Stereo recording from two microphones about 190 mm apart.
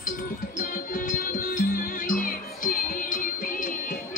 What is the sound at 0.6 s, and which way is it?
Music, 45° left (ahead or behind).